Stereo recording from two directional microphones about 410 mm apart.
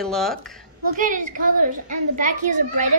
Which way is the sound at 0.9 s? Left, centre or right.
Centre.